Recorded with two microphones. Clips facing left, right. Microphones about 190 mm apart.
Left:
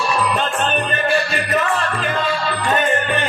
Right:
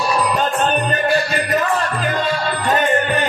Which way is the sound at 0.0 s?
40° right (ahead or behind).